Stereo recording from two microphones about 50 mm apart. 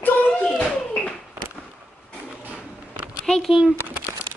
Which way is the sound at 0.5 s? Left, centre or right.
Left.